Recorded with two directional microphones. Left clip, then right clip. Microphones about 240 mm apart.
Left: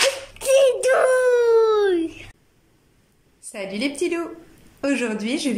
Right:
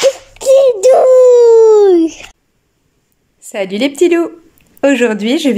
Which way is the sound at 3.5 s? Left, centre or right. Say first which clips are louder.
Right 12 dB; right.